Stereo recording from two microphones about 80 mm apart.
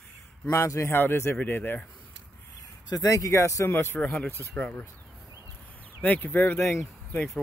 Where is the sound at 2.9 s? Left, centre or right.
Left.